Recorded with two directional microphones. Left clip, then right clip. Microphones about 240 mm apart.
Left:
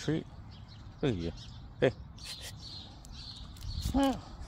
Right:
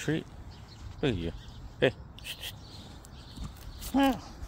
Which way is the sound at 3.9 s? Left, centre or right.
Centre.